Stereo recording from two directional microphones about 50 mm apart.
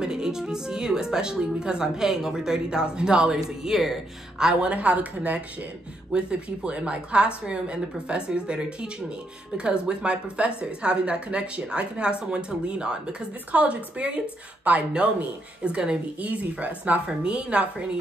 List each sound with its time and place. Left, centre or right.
0.0 s speech: centre; by 17.0 s right
17.0 s speech: right